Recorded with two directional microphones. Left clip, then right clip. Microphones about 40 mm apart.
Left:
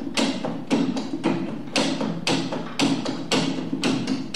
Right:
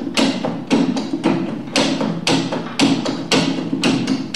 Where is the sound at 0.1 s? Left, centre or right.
Right.